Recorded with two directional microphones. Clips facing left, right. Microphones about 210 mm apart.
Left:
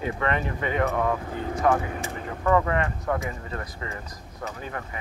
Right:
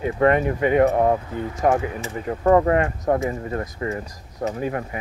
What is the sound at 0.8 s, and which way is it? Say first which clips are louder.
Speech: right 6 dB; 35° right (ahead or behind).